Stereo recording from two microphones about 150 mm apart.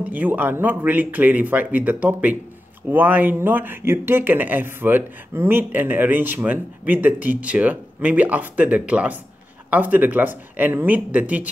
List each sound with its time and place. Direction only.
0.0 s speech: 10° right (ahead or behind)